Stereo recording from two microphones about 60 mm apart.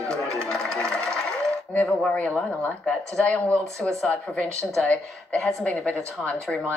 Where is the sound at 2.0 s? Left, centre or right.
Left.